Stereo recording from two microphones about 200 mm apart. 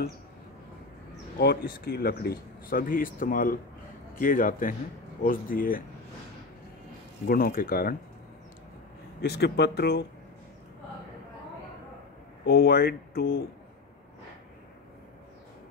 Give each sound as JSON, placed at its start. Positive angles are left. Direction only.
{"t": 1.4, "sound": "speech", "side_deg": 50}
{"t": 7.2, "sound": "speech", "side_deg": 45}
{"t": 9.2, "sound": "speech", "side_deg": 55}
{"t": 12.4, "sound": "speech", "side_deg": 50}